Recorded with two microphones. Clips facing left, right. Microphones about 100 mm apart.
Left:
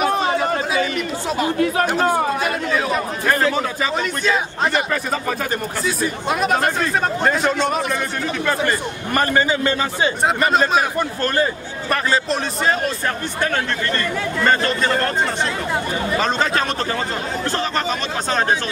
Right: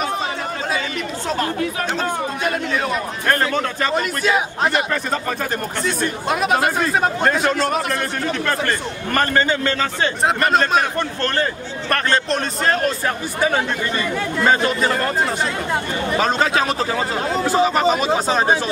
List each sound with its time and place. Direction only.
2.0 s speech: 45° left (ahead or behind)
3.3 s a man's voice: 5° left (ahead or behind)
10.2 s speech: 5° left (ahead or behind)
13.4 s speech: 10° right (ahead or behind)